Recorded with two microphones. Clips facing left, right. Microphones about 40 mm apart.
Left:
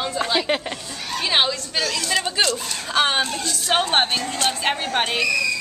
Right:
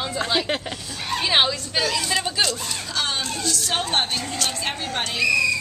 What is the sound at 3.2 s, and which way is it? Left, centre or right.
Speech, centre.